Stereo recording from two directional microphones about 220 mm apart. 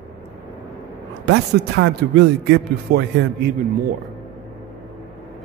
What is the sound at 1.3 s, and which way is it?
A man's voice, 55° right (ahead or behind).